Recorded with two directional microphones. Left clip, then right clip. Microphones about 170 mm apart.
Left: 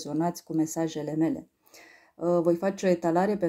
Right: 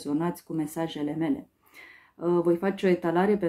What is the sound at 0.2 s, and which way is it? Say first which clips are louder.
Speech: left 3 dB; 45° left (ahead or behind).